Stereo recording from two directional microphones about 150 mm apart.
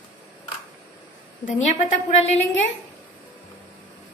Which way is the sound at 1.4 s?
55° left (ahead or behind).